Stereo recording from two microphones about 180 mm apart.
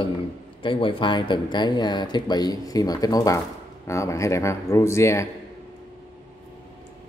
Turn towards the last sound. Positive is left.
turn(degrees=15)  # may be behind; listen again after turning